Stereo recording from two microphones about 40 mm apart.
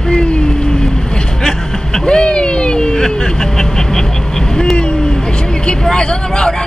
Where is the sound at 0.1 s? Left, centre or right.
Left.